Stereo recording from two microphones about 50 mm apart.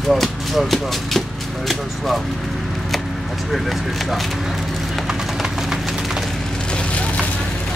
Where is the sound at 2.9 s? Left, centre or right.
Centre.